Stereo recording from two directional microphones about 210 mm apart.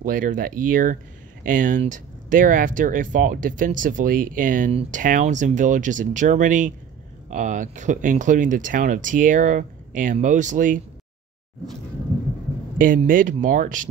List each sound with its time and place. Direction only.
0.0 s speech: 40° right (ahead or behind)
12.7 s speech: 40° right (ahead or behind)